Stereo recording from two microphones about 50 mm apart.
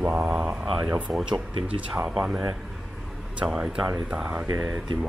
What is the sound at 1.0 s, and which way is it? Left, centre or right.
Speech, centre.